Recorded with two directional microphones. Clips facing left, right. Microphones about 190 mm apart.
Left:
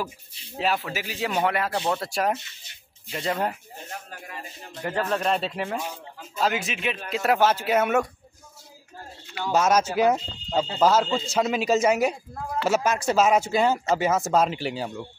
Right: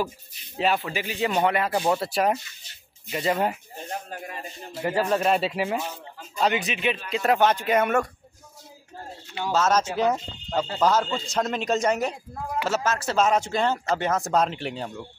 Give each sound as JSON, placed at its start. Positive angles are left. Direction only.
{"t": 0.6, "sound": "speech", "side_deg": 0}
{"t": 3.9, "sound": "speech", "side_deg": -25}
{"t": 4.7, "sound": "speech", "side_deg": -5}
{"t": 5.8, "sound": "speech", "side_deg": 5}
{"t": 9.5, "sound": "speech", "side_deg": 10}